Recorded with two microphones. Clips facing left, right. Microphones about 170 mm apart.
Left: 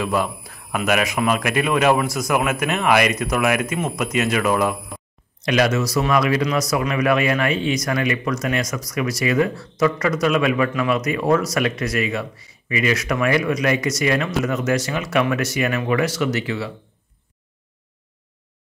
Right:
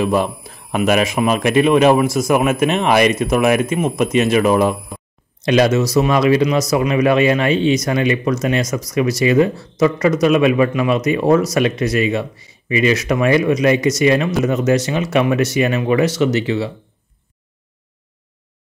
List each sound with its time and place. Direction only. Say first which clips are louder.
0.0 s speech: right 5 dB; 20° right (ahead or behind)